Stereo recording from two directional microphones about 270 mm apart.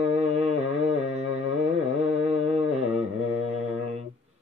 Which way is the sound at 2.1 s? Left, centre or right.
Right.